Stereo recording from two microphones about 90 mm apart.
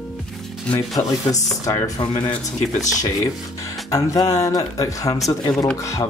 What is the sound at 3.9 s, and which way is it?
Speech, 40° left (ahead or behind).